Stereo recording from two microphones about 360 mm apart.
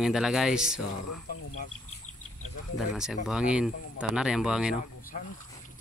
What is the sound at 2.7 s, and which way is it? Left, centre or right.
Speech, centre.